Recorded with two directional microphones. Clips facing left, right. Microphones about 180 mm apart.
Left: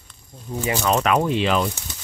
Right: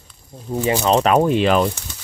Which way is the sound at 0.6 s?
30° right (ahead or behind).